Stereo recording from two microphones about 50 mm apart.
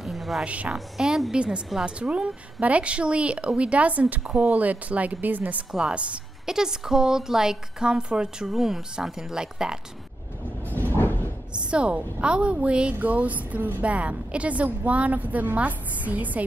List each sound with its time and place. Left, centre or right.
0.0 s a sound: centre
0.4 s speech: right
0.7 s speech: centre
2.0 s speech: right
5.7 s speech: centre
6.4 s speech: centre
11.0 s a sound: left
11.5 s speech: right
13.8 s a woman's voice: right